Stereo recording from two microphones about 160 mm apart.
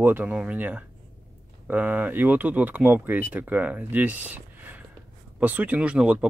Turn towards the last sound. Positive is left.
turn(degrees=-5)  # may be behind; listen again after turning